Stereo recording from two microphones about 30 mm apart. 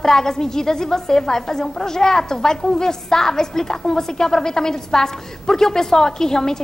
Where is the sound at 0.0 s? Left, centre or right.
Centre.